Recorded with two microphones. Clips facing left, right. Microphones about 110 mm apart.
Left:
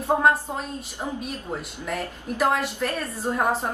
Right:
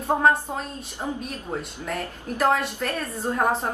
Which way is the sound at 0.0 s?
Centre (ahead or behind).